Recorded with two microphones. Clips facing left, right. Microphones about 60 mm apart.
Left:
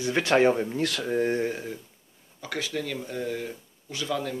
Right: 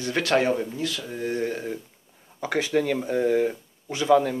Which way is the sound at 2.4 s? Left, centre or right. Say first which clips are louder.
Right 8 dB; right.